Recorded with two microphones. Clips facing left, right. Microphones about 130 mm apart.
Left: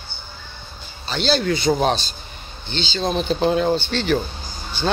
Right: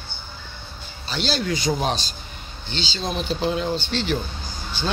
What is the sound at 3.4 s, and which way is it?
Speech, 45° left (ahead or behind).